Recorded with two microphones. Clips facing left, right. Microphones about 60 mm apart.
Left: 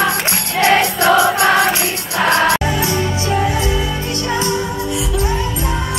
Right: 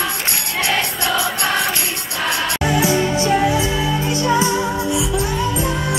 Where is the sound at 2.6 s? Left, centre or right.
Centre.